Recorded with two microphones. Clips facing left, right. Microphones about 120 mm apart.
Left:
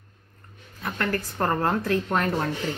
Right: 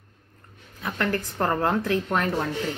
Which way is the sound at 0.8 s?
Centre (ahead or behind).